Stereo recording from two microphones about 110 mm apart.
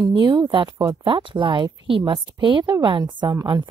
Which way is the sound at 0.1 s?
50° right (ahead or behind).